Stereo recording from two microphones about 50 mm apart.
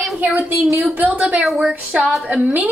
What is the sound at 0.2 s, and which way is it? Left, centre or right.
Speech, right.